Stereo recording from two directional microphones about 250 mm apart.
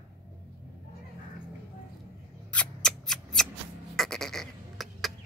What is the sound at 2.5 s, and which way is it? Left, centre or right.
Scissors, centre.